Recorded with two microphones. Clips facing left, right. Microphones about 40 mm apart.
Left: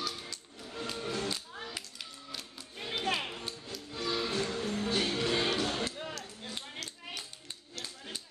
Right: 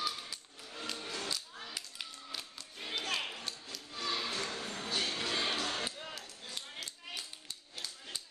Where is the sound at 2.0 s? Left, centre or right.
Centre.